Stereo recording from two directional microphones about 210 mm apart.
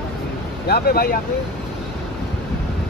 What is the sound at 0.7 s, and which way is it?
Speech, 45° left (ahead or behind).